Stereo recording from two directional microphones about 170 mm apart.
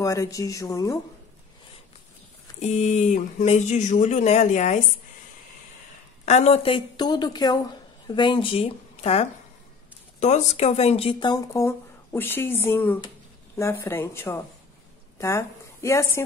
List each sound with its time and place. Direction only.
0.0 s a woman's voice: 20° left (ahead or behind)
2.6 s speech: 45° left (ahead or behind)
6.2 s a woman's voice: 40° left (ahead or behind); by 16.3 s 15° left (ahead or behind)